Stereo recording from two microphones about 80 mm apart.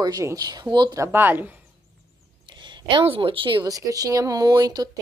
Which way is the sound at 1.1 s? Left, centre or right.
Right.